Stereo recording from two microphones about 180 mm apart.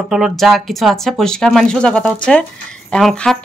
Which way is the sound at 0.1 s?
Centre (ahead or behind).